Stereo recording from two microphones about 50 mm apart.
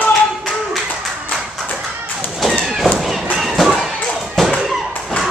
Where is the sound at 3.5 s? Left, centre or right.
Centre.